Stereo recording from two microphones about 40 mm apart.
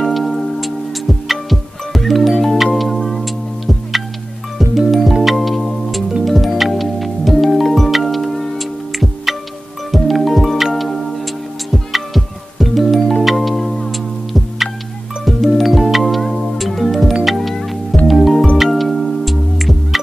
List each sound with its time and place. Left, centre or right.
0.0 s music: centre